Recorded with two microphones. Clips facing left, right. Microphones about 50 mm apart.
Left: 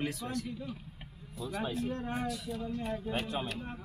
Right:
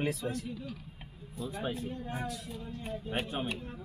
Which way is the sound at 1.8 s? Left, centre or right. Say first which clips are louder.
Left 4 dB; left.